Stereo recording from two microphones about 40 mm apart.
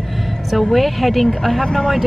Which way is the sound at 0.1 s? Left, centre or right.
Centre.